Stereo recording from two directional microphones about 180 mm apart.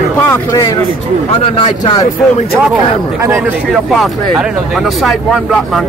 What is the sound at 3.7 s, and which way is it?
Speech, centre (ahead or behind).